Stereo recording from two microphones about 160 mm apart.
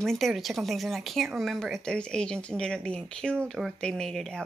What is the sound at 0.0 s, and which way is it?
Speech, centre (ahead or behind).